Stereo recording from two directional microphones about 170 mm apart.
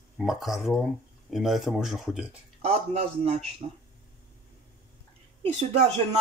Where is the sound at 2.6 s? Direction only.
40° right (ahead or behind).